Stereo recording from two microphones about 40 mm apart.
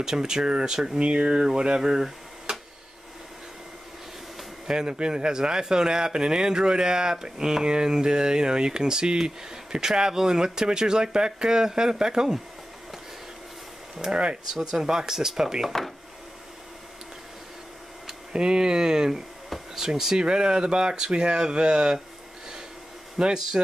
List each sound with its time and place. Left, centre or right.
0.0 s speech: centre
4.6 s speech: centre
14.0 s speech: centre
18.3 s speech: centre
19.5 s a sound: centre
19.9 s speech: centre
23.1 s speech: centre